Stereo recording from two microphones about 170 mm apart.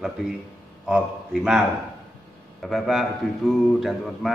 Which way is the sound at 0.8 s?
Centre (ahead or behind).